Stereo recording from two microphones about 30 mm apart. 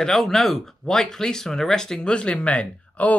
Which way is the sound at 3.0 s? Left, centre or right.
Left.